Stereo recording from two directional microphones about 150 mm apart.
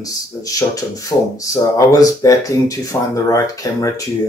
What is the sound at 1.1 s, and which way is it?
Speech, 15° left (ahead or behind).